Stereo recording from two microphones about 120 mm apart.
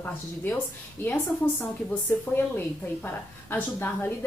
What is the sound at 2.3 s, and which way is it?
A woman's voice, 15° left (ahead or behind).